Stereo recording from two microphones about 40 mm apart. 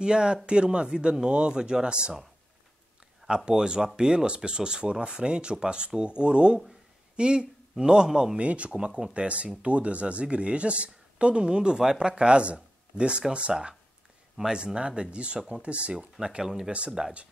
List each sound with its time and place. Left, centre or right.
0.0 s speech: right
3.3 s speech: right
8.4 s speech: right
16.2 s speech: centre